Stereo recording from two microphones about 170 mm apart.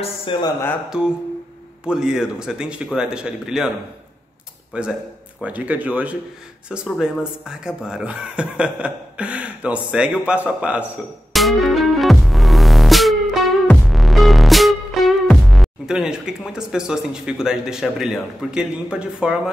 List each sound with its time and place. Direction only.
0.0 s speech: 30° left (ahead or behind)
0.8 s a man's voice: 5° right (ahead or behind)
4.7 s speech: 5° right (ahead or behind)
11.3 s music: centre (ahead or behind)